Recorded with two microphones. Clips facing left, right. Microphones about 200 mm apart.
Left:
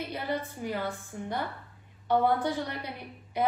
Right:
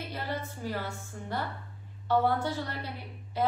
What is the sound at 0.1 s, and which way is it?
A woman's voice, 15° left (ahead or behind).